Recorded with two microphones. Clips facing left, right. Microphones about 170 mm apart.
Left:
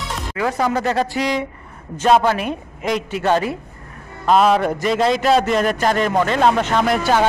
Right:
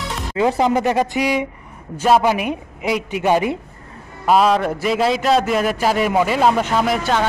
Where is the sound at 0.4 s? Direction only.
20° right (ahead or behind).